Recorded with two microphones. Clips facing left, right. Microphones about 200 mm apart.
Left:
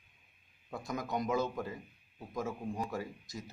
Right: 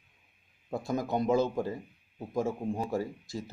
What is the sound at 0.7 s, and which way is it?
Speech, 30° right (ahead or behind).